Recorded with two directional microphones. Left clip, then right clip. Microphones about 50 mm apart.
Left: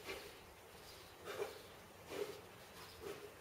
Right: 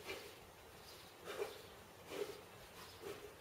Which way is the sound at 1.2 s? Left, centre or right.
Centre.